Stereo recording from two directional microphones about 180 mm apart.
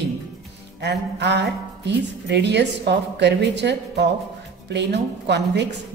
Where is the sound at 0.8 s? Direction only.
70° right (ahead or behind).